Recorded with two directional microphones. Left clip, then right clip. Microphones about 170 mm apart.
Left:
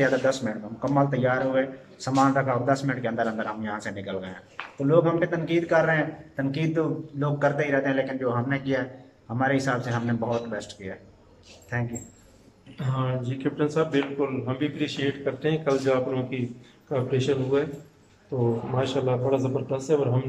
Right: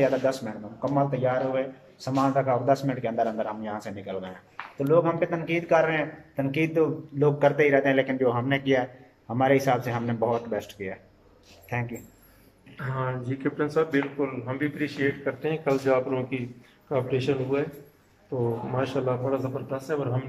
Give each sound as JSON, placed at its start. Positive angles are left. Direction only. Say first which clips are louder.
{"t": 0.0, "sound": "a man's voice", "louder": "left 1 dB", "side_deg": -5}
{"t": 12.7, "sound": "speech", "louder": "left 1 dB", "side_deg": 10}
{"t": 18.8, "sound": "speech", "louder": "left 1 dB", "side_deg": 5}
{"t": 19.5, "sound": "speech", "louder": "left 5 dB", "side_deg": 20}